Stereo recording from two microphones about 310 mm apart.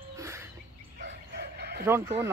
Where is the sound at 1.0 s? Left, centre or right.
Right.